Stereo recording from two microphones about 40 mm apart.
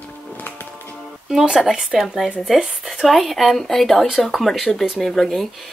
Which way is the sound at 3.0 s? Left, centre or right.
Centre.